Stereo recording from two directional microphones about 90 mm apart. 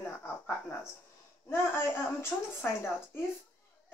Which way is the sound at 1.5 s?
25° left (ahead or behind).